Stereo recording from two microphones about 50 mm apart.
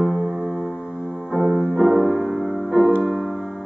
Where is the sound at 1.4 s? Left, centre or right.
Centre.